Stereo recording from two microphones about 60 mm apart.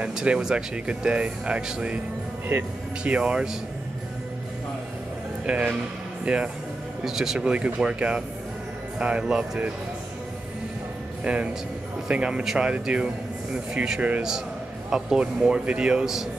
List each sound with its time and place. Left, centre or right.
0.1 s speech: centre
2.5 s speech: right
3.0 s speech: centre
5.5 s speech: centre
7.1 s speech: centre
7.3 s speech: centre
11.2 s speech: right
14.9 s speech: centre